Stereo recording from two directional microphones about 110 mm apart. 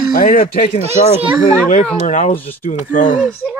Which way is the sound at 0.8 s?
65° right (ahead or behind).